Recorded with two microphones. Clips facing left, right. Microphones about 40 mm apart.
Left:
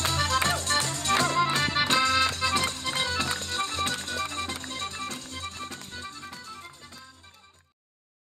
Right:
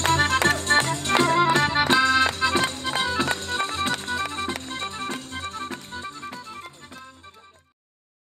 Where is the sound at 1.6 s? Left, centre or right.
Right.